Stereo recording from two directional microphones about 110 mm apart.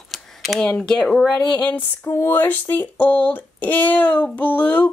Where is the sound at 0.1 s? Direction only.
Centre (ahead or behind).